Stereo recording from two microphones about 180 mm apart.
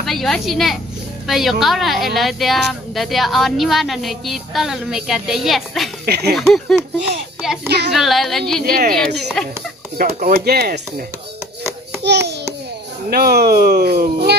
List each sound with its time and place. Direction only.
0.0 s a woman's voice: centre (ahead or behind)
6.0 s speech: 60° right (ahead or behind)
6.3 s a woman's voice: centre (ahead or behind)
7.6 s babbling: 65° right (ahead or behind)
7.9 s a woman's voice: centre (ahead or behind)
8.6 s speech: 55° right (ahead or behind)
9.9 s speech: 55° right (ahead or behind)
12.0 s babbling: 70° right (ahead or behind)
13.1 s speech: 60° right (ahead or behind)